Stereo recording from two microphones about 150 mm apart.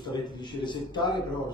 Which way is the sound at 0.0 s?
30° left (ahead or behind).